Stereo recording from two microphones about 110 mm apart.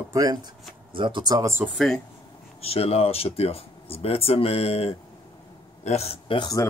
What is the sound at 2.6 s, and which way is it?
Speech, 65° left (ahead or behind).